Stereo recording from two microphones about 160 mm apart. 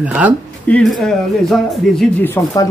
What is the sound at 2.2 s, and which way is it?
Speech, 20° left (ahead or behind).